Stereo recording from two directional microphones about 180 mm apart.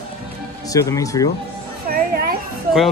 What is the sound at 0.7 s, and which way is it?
Speech, 20° left (ahead or behind).